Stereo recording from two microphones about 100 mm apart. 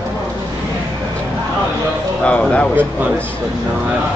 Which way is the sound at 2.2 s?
10° left (ahead or behind).